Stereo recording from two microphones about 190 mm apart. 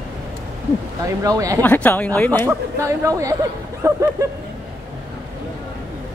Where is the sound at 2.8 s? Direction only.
15° right (ahead or behind).